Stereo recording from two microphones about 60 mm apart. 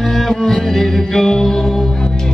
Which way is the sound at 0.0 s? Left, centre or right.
Centre.